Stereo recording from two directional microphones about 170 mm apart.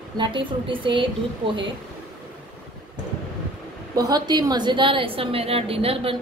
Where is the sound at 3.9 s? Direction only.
25° right (ahead or behind).